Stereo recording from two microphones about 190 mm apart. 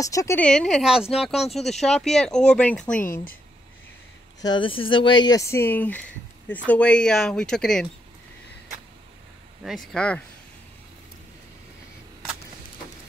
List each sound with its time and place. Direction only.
0.0 s speech: 15° left (ahead or behind)
0.4 s speech: 5° left (ahead or behind)
3.0 s speech: 45° left (ahead or behind)
4.4 s speech: 25° left (ahead or behind); by 7.9 s 5° left (ahead or behind)
9.6 s speech: centre (ahead or behind)